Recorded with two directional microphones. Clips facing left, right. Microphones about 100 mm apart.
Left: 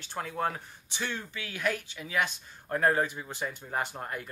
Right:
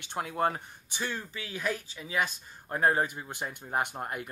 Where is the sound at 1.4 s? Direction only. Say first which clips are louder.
Left 3 dB; 30° right (ahead or behind).